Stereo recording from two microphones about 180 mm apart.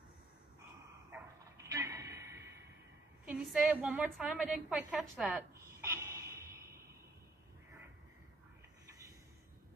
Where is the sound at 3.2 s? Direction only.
5° right (ahead or behind).